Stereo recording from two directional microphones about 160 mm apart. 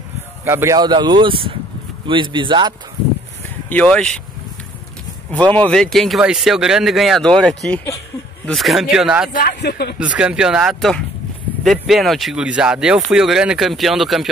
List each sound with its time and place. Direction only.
0.5 s speech: 15° right (ahead or behind)
0.7 s speech: 30° right (ahead or behind)
3.6 s speech: 10° left (ahead or behind)
5.5 s speech: 5° left (ahead or behind)
9.3 s speech: 75° left (ahead or behind)
9.9 s speech: 5° right (ahead or behind)